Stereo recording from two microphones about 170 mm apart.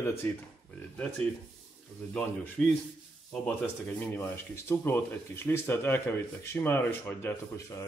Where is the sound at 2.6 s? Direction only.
5° left (ahead or behind).